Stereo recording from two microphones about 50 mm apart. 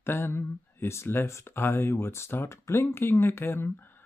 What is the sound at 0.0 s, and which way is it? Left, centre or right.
Speech, left.